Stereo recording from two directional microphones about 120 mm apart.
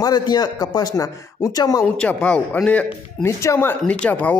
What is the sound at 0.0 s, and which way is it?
Speech, 35° left (ahead or behind).